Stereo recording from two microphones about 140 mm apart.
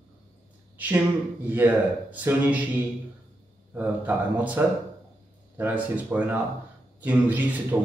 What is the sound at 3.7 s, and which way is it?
A man's voice, 15° right (ahead or behind).